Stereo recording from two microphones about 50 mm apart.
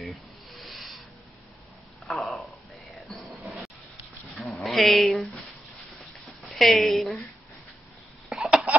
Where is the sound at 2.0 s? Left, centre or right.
Centre.